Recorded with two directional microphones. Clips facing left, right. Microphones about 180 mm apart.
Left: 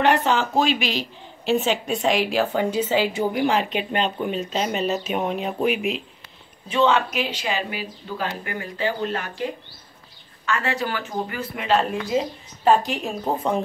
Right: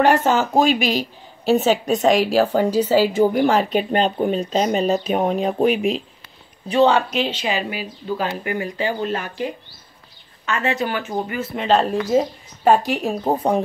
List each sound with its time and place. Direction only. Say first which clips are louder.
0.0 s a woman's voice: right 3 dB; 45° right (ahead or behind); by 9.2 s 15° right (ahead or behind)
10.4 s speech: right 3 dB; 20° right (ahead or behind)
12.1 s a woman's voice: right 5 dB; 45° right (ahead or behind)